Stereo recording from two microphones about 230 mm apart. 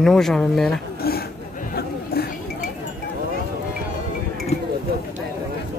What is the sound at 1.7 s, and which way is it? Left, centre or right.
Chatter, left.